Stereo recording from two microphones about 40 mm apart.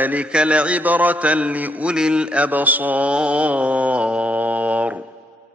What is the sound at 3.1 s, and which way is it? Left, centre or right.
Mantra, right.